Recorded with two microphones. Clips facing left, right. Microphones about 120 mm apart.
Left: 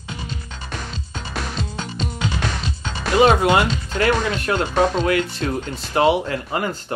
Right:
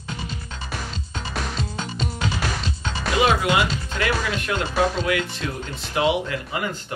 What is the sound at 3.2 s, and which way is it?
Speech, 45° left (ahead or behind).